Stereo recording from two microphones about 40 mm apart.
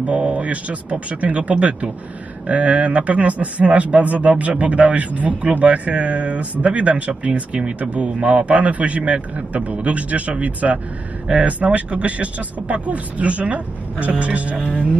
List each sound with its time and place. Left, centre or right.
0.0 s speech: right